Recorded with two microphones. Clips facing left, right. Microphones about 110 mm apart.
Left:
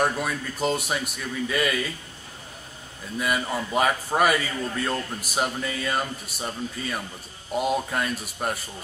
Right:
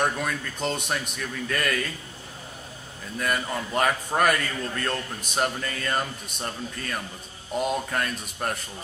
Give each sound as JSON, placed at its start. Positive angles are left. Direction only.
{"t": 0.0, "sound": "a man's voice", "side_deg": 5}
{"t": 3.2, "sound": "a man's voice", "side_deg": 5}